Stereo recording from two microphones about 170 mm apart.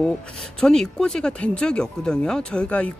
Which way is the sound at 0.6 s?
5° left (ahead or behind).